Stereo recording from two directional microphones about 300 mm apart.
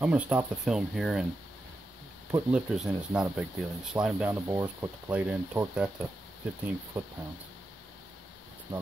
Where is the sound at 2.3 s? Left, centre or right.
Centre.